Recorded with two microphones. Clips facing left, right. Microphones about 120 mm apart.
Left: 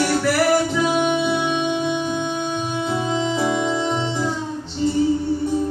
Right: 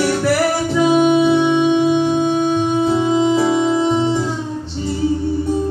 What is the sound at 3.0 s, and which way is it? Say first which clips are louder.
Music: right 6 dB; 15° right (ahead or behind).